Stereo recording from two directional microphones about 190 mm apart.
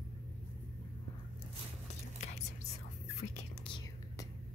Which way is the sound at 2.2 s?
35° left (ahead or behind).